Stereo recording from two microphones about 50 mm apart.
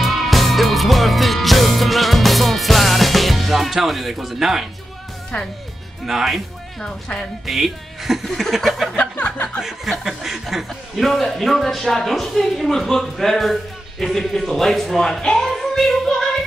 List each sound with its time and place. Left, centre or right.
0.0 s music: centre
6.0 s speech: centre
6.8 s child singing: centre
7.4 s speech: centre
9.1 s music: left
9.6 s speech: centre
15.2 s child singing: centre